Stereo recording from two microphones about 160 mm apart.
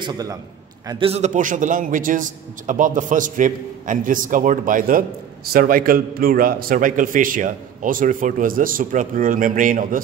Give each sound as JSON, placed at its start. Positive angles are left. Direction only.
{"t": 0.0, "sound": "a man's voice", "side_deg": -20}
{"t": 0.8, "sound": "a man's voice", "side_deg": -35}